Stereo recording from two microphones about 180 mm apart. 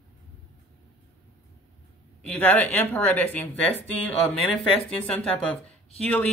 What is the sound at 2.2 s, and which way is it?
Speech, 5° left (ahead or behind).